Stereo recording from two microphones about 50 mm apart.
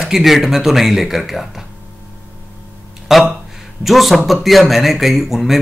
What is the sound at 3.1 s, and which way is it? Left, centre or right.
Speech, centre.